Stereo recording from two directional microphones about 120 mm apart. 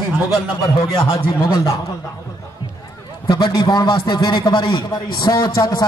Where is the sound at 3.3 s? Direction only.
35° left (ahead or behind).